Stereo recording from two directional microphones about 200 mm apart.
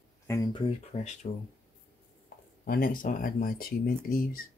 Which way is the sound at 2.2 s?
45° left (ahead or behind).